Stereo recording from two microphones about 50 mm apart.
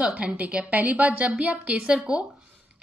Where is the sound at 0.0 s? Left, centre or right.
Right.